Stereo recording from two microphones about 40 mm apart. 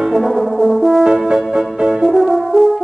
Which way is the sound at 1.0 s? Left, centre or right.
Right.